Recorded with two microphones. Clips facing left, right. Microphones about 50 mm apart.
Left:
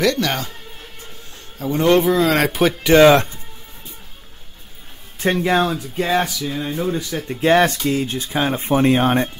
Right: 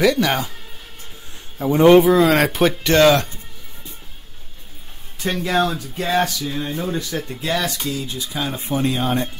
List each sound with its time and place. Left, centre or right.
0.0 s speech: centre
1.6 s speech: centre
2.0 s speech: centre
3.1 s speech: left
5.2 s speech: left
6.5 s speech: centre
7.2 s speech: left